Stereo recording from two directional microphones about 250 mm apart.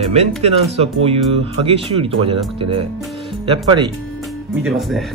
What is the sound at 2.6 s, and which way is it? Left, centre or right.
Speech, right.